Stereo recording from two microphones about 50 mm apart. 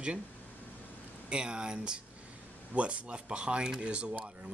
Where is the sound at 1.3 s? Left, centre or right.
Centre.